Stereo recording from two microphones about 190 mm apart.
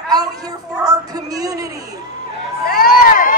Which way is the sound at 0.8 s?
20° right (ahead or behind).